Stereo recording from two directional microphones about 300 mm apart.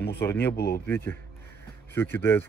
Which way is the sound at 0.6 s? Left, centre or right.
Left.